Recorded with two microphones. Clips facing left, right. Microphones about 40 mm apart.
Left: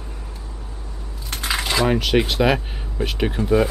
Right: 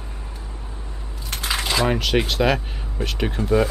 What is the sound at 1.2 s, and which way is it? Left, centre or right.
Speech, centre.